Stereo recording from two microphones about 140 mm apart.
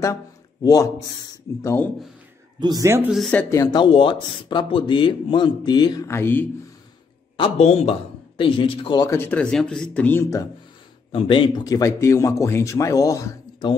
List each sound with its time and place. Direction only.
0.0 s speech: 25° left (ahead or behind)
2.6 s a man's voice: 30° right (ahead or behind)
3.3 s speech: 10° left (ahead or behind)
3.5 s speech: 30° left (ahead or behind)
6.0 s speech: 15° left (ahead or behind)
7.3 s a man's voice: 45° left (ahead or behind)
9.0 s speech: 15° left (ahead or behind)
9.4 s speech: 5° left (ahead or behind)
11.1 s speech: 40° left (ahead or behind); by 13.7 s 25° left (ahead or behind)